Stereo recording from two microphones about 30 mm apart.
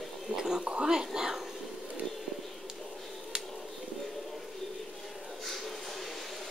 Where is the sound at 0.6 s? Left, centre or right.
Right.